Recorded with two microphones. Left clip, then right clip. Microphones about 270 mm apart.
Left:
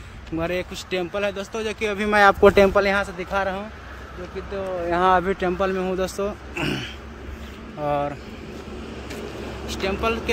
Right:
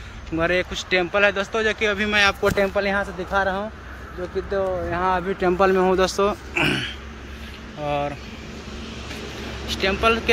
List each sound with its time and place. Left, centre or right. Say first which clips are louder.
0.4 s speech: right 5 dB; centre
2.2 s speech: left 5 dB; left
2.8 s speech: left 2 dB; centre
3.3 s speech: right 2 dB; centre
4.5 s speech: right 6 dB; centre
4.9 s speech: left 5 dB; left
5.4 s speech: right 5 dB; centre
9.7 s speech: right 5 dB; centre